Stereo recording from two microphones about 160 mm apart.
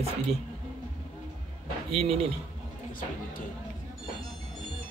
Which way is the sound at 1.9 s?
35° right (ahead or behind).